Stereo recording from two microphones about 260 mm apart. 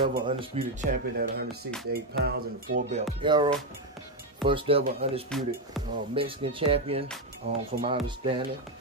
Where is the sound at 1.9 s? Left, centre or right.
Right.